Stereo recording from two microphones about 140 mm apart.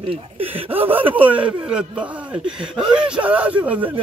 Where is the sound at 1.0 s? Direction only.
40° right (ahead or behind).